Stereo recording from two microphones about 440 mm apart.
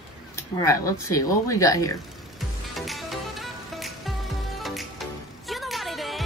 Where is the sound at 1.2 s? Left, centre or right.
Centre.